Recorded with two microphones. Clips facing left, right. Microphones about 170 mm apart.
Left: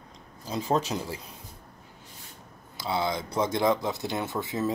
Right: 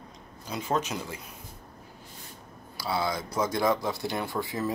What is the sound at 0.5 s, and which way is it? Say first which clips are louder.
Speech: left 3 dB; 35° left (ahead or behind).